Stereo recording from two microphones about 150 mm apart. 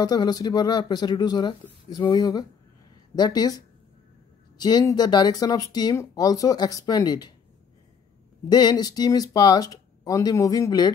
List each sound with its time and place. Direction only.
0.0 s speech: 25° left (ahead or behind)
8.5 s speech: 30° left (ahead or behind)